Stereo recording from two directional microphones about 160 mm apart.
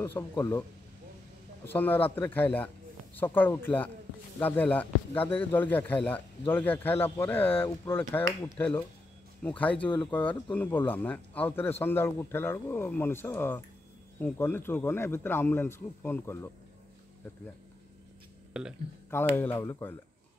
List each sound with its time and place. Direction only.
0.0 s speech: 15° left (ahead or behind)
18.5 s speech: 5° right (ahead or behind)
19.0 s speech: 15° left (ahead or behind)